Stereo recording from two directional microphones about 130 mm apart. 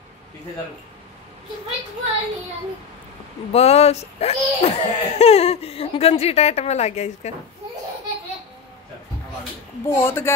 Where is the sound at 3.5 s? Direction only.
55° left (ahead or behind).